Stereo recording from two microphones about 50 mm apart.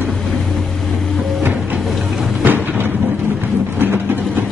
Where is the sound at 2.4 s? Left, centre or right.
Right.